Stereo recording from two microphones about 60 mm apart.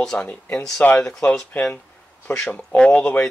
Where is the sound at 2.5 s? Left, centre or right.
Centre.